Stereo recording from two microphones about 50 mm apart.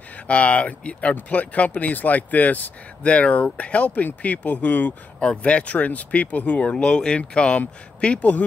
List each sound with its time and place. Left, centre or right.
0.3 s speech: left